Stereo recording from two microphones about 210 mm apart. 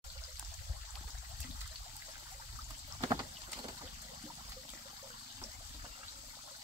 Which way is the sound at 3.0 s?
15° right (ahead or behind).